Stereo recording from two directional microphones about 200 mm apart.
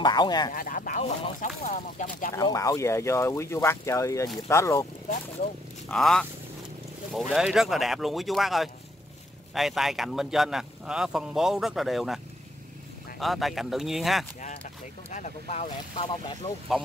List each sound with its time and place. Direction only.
0.0 s speech: 20° left (ahead or behind)
0.5 s speech: 45° left (ahead or behind)
2.3 s speech: 15° left (ahead or behind)
5.9 s speech: 5° left (ahead or behind)
13.2 s speech: centre (ahead or behind)
14.4 s speech: 30° left (ahead or behind)